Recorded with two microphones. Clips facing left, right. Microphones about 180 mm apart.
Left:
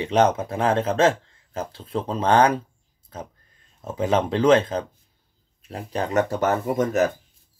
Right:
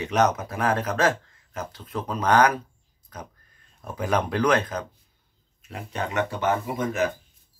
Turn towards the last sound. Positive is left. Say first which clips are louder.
# left 5 dB
turn(degrees=45)  # may be behind; listen again after turning